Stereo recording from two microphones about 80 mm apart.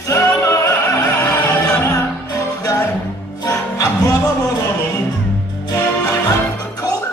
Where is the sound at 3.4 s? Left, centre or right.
Left.